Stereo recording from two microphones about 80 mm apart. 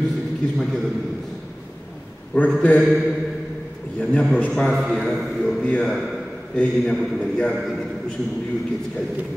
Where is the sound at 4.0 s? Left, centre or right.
Centre.